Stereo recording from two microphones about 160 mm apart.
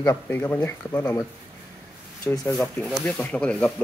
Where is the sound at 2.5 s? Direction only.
5° left (ahead or behind).